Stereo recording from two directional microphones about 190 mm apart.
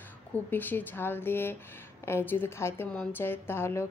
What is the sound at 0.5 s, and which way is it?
A woman's voice, 10° left (ahead or behind).